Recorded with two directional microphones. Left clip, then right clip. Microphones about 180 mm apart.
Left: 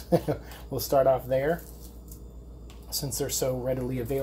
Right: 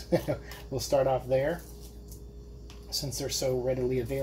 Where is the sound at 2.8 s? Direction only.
30° left (ahead or behind).